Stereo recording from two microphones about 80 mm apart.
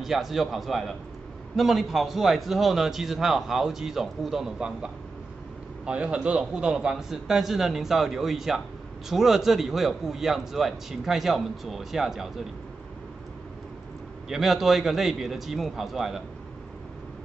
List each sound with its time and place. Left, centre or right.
0.0 s a man's voice: centre
14.3 s a man's voice: centre